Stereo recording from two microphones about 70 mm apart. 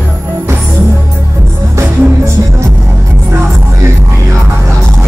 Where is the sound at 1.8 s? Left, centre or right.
Right.